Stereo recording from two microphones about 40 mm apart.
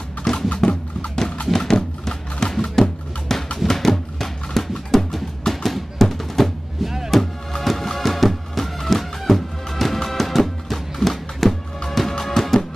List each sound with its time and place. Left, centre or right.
0.3 s music: centre
0.6 s music: left
1.5 s music: centre
6.8 s music: centre
7.1 s music: centre